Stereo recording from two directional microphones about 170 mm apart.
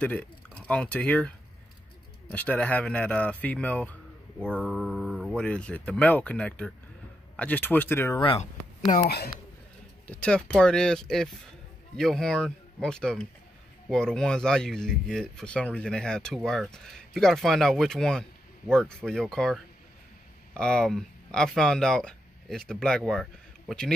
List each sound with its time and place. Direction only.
0.0 s speech: 5° left (ahead or behind)
2.3 s speech: 10° left (ahead or behind)
4.5 s speech: 5° right (ahead or behind); by 8.2 s 15° left (ahead or behind)
8.2 s speech: 35° left (ahead or behind)
9.0 s a man's voice: 65° left (ahead or behind)
10.0 s speech: 5° left (ahead or behind)